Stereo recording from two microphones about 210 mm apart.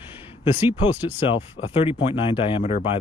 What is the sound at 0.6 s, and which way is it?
Speech, 10° right (ahead or behind).